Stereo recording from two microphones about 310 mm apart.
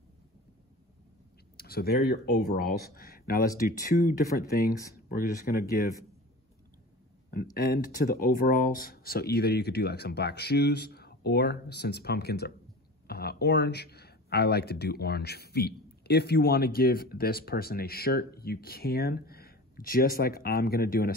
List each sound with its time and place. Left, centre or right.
1.6 s speech: left
7.5 s speech: left